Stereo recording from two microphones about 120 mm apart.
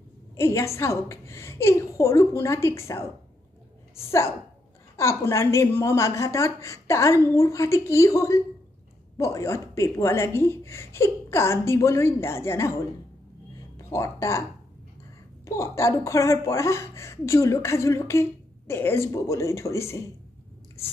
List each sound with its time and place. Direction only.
0.4 s speech: 25° left (ahead or behind)
4.9 s speech: 25° left (ahead or behind)
13.7 s speech: 25° left (ahead or behind)
15.4 s speech: 25° left (ahead or behind)